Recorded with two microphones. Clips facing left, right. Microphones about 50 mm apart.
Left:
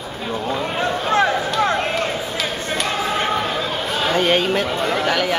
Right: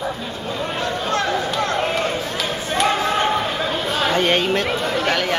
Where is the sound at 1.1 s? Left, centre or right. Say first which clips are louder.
Left 4 dB; centre.